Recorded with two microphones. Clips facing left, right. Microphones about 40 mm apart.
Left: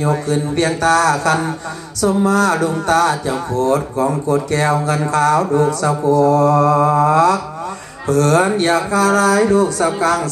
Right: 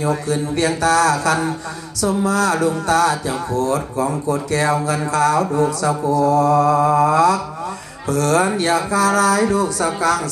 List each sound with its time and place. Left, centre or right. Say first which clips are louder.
0.0 s speech: left 2 dB; left